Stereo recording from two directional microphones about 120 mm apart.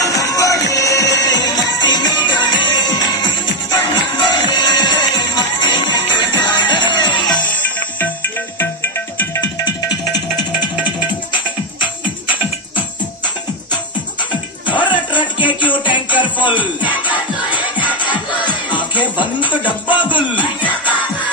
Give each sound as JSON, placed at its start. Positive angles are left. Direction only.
{"t": 0.0, "sound": "music", "side_deg": 30}
{"t": 7.4, "sound": "music", "side_deg": 15}
{"t": 9.4, "sound": "music", "side_deg": 35}
{"t": 14.8, "sound": "music", "side_deg": 40}
{"t": 15.4, "sound": "music", "side_deg": 15}
{"t": 15.8, "sound": "music", "side_deg": 40}
{"t": 17.8, "sound": "music", "side_deg": 40}